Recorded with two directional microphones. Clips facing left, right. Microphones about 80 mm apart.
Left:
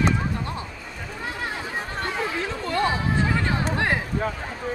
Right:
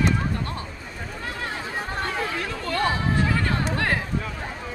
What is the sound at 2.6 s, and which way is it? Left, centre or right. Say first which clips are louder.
Chatter: even; left.